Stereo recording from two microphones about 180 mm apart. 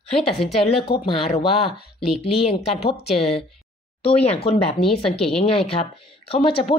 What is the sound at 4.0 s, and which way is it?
Speech, 35° left (ahead or behind).